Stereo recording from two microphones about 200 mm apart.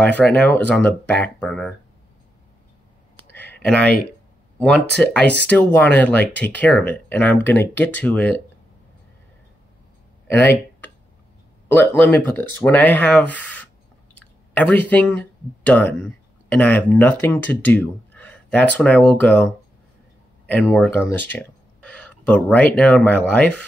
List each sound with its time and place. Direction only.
0.0 s speech: 10° left (ahead or behind)
3.3 s clicking: 60° right (ahead or behind)
3.6 s speech: 5° left (ahead or behind)
4.9 s speech: 5° left (ahead or behind)
10.2 s a sound: 10° left (ahead or behind)
11.7 s speech: 10° left (ahead or behind)